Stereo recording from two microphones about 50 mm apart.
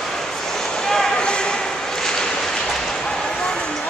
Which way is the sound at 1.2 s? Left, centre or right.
Centre.